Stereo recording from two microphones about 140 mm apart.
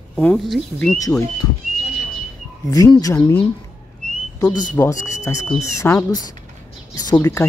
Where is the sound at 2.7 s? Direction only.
25° left (ahead or behind).